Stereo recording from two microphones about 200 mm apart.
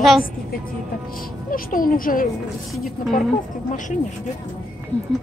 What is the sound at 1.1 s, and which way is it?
A child's voice, 45° left (ahead or behind).